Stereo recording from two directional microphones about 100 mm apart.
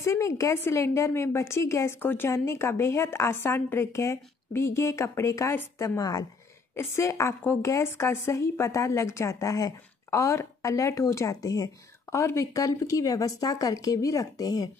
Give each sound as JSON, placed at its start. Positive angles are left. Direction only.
{"t": 0.0, "sound": "a woman's voice", "side_deg": 30}
{"t": 5.9, "sound": "a woman's voice", "side_deg": 40}
{"t": 6.7, "sound": "a woman's voice", "side_deg": 30}